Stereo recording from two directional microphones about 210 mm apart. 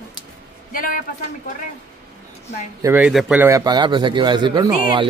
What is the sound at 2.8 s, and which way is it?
Speech, 5° right (ahead or behind).